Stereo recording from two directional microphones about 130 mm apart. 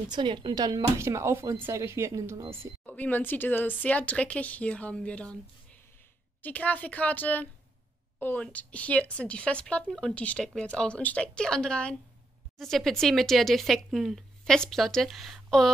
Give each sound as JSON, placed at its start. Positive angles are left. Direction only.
{"t": 0.1, "sound": "speech", "side_deg": -40}
{"t": 2.9, "sound": "speech", "side_deg": 15}
{"t": 6.4, "sound": "speech", "side_deg": 10}